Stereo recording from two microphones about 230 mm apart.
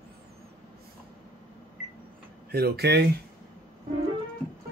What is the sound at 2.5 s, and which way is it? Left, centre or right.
Speech, right.